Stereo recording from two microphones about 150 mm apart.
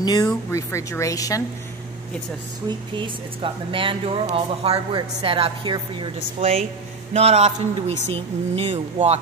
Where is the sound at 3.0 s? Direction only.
35° right (ahead or behind).